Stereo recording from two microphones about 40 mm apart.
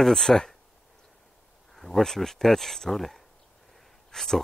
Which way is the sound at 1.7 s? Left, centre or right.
Centre.